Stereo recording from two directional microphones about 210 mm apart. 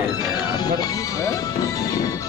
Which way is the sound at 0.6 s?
15° left (ahead or behind).